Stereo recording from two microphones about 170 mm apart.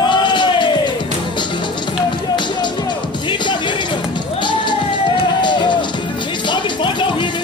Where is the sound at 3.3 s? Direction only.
30° left (ahead or behind).